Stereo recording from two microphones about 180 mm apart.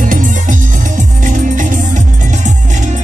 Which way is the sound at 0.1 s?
50° right (ahead or behind).